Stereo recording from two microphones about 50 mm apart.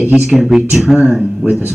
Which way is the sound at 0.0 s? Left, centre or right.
Centre.